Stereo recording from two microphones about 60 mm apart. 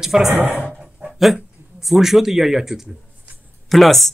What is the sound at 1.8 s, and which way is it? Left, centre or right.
Speech, centre.